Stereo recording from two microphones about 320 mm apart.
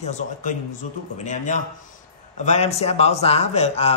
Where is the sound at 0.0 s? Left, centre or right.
Left.